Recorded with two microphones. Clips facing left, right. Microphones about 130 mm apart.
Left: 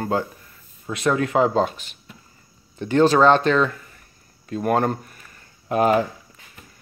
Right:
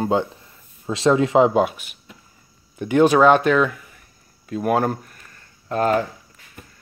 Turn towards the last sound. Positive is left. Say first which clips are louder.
# left 1 dB
turn(degrees=10)  # may be behind; listen again after turning